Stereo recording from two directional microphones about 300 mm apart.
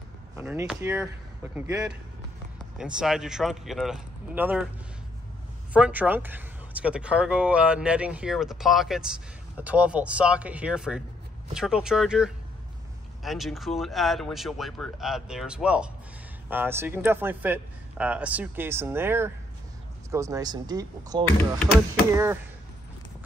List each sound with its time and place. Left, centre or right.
0.4 s a man's voice: centre
5.7 s a man's voice: centre